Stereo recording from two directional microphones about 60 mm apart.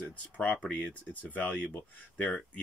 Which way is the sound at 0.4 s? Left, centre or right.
Left.